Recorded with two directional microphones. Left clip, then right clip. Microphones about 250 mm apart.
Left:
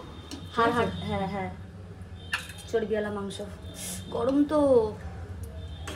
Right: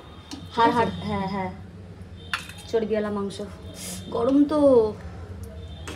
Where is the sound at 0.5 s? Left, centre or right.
Right.